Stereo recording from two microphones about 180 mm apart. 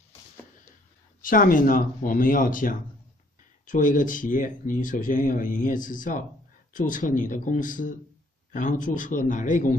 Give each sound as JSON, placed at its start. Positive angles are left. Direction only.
{"t": 1.2, "sound": "speech", "side_deg": 50}